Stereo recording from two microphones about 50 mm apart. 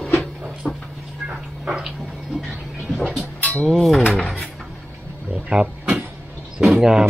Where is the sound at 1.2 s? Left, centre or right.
Centre.